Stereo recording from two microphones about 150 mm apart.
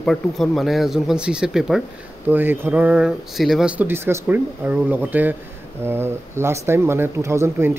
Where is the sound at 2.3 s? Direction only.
15° right (ahead or behind).